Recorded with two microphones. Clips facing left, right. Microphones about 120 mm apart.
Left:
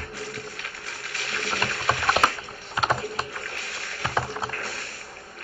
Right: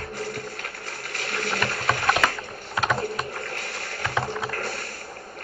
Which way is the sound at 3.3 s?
45° right (ahead or behind).